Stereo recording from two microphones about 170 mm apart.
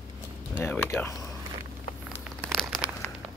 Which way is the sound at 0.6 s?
10° left (ahead or behind).